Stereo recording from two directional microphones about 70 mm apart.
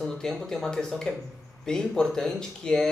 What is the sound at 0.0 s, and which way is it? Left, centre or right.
A man's voice, centre.